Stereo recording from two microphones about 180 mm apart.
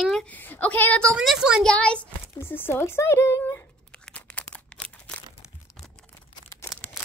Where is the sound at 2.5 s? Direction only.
15° left (ahead or behind).